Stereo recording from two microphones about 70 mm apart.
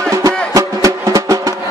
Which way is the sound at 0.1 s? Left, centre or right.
Right.